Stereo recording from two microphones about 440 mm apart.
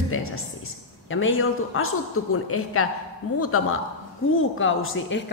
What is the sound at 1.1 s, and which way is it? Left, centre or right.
A man's voice, left.